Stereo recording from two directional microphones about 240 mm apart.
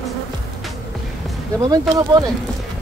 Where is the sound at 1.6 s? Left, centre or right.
Centre.